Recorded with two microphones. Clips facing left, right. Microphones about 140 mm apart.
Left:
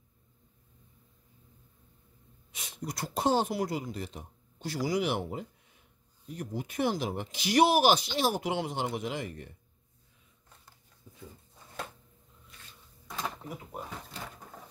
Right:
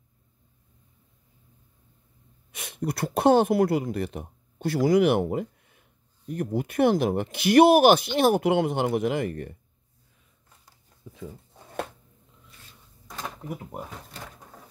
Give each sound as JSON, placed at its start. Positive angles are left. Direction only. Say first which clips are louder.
{"t": 2.5, "sound": "speech", "louder": "right 8 dB", "side_deg": -60}
{"t": 11.1, "sound": "dog", "louder": "right 9 dB", "side_deg": -75}
{"t": 13.8, "sound": "drawer open or close", "louder": "right 1 dB", "side_deg": 0}